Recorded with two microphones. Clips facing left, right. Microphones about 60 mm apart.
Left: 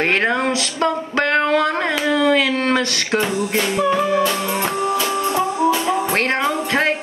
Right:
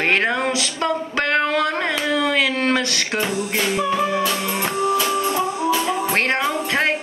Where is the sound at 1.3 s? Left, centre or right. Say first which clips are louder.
Left 2 dB; left.